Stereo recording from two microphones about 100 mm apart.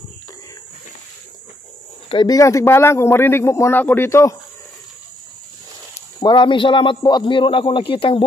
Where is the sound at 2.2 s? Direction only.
35° left (ahead or behind).